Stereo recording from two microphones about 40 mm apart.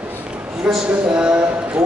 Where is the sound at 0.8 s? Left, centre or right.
Right.